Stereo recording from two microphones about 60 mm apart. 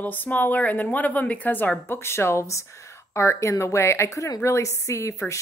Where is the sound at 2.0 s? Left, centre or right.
Left.